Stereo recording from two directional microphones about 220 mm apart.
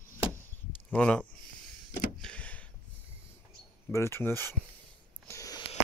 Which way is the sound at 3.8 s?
10° left (ahead or behind).